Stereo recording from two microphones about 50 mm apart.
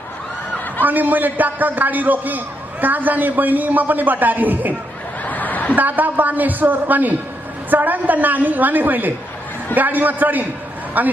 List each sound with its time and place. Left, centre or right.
0.8 s a man's voice: right
5.2 s a sound: left
5.8 s a man's voice: right